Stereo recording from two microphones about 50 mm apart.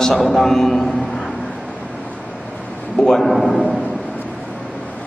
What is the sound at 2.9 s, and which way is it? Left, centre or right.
Speech, centre.